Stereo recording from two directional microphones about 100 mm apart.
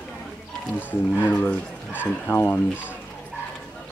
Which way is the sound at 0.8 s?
20° left (ahead or behind).